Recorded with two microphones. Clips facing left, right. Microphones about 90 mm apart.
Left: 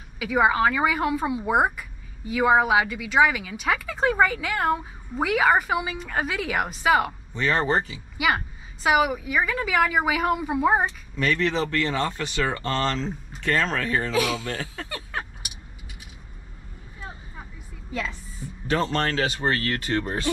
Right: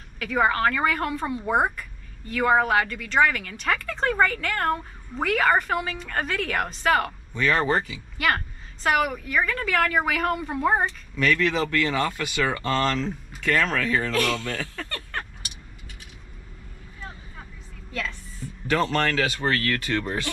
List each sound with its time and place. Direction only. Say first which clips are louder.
0.2 s speech: left 2 dB; 10° left (ahead or behind)
7.3 s speech: even; 25° left (ahead or behind)
8.2 s speech: left 1 dB; 5° left (ahead or behind)
11.2 s speech: right 1 dB; 25° left (ahead or behind)
14.1 s speech: even; 5° left (ahead or behind)
18.7 s speech: right 1 dB; 25° left (ahead or behind)